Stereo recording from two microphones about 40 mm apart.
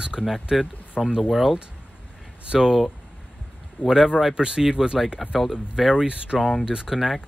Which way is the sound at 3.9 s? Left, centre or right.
Centre.